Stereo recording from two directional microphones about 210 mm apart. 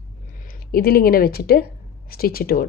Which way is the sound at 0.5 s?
45° left (ahead or behind).